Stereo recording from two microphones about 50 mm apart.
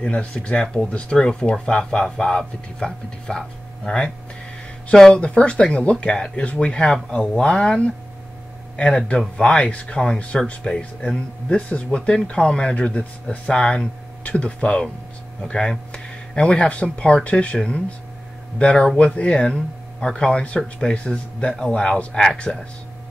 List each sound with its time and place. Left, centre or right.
0.0 s speech: centre
5.2 s speech: left
20.4 s speech: left